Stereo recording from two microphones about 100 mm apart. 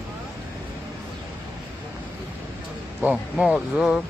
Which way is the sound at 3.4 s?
5° right (ahead or behind).